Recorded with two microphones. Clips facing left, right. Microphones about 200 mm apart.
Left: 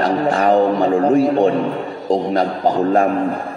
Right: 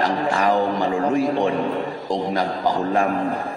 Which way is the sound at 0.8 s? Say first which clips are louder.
Left 6 dB; 45° left (ahead or behind).